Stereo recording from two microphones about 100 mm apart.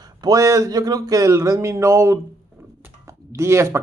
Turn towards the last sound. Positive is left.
turn(degrees=-25)  # may be behind; listen again after turning